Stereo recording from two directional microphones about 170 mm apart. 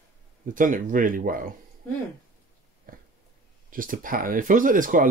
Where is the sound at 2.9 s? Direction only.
55° right (ahead or behind).